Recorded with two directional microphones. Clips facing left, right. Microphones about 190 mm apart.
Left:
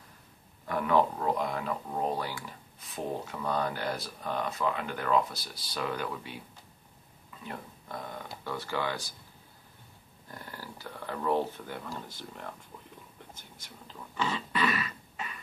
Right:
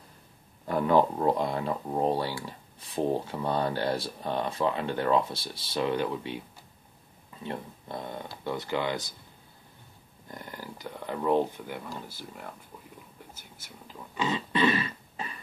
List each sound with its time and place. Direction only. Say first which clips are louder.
0.7 s speech: right 3 dB; 30° right (ahead or behind)
7.4 s speech: right 5 dB; 25° right (ahead or behind)
10.3 s speech: right 3 dB; 15° right (ahead or behind)
13.3 s whispering: even; 5° right (ahead or behind)
14.1 s a sound: right 3 dB; 20° right (ahead or behind)